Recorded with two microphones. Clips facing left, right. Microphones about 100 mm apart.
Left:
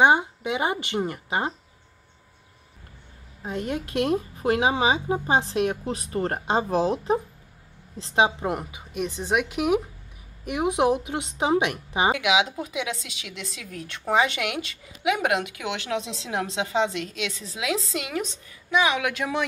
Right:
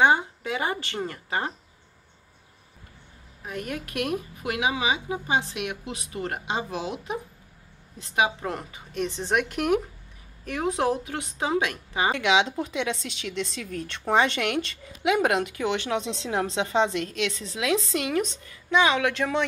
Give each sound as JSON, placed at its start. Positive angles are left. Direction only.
{"t": 0.0, "sound": "a woman's voice", "side_deg": 20}
{"t": 3.4, "sound": "a woman's voice", "side_deg": 25}
{"t": 8.5, "sound": "a woman's voice", "side_deg": 10}
{"t": 10.4, "sound": "a woman's voice", "side_deg": 15}
{"t": 12.1, "sound": "a woman's voice", "side_deg": 5}